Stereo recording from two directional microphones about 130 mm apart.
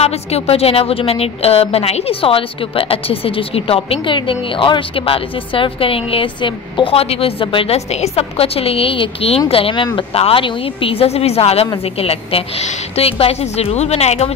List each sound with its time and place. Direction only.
0.0 s a woman's voice: 50° left (ahead or behind)